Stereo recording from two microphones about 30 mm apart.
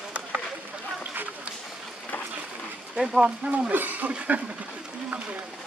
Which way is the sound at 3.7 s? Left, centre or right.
Right.